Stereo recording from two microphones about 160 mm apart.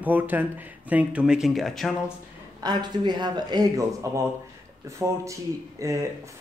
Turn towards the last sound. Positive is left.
turn(degrees=-20)  # may be behind; listen again after turning